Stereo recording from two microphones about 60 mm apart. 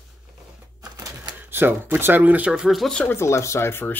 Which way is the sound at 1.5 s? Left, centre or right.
Right.